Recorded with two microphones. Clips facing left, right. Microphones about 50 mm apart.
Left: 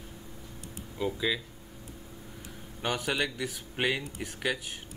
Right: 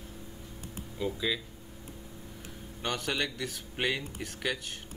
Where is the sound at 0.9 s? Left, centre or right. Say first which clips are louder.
Left 2 dB; centre.